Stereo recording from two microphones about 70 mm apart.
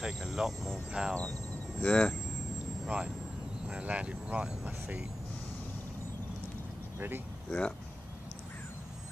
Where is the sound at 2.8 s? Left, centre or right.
Centre.